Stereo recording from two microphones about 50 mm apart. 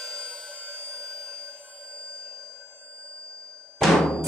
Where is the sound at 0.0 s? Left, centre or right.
Centre.